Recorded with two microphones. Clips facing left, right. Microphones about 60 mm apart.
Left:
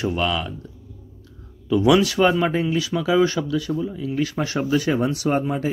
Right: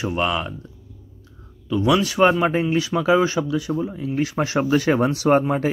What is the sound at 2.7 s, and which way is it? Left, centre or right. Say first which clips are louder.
Speech: right 3 dB; right.